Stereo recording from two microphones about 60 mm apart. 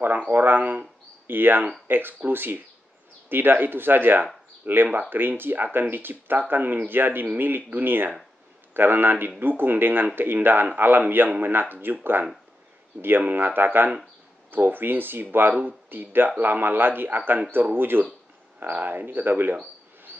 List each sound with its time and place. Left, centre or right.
0.3 s speech: right